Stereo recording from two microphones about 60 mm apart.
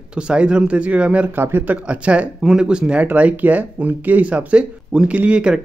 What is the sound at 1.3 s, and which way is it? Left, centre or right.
Speech, right.